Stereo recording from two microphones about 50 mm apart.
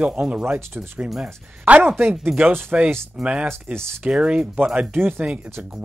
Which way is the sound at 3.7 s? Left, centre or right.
Right.